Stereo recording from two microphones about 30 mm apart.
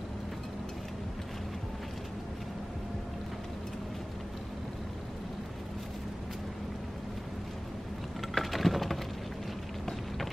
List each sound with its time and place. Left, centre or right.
8.4 s typing: centre